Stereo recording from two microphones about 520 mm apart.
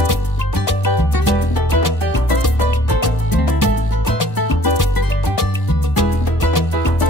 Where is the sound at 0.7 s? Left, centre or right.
Left.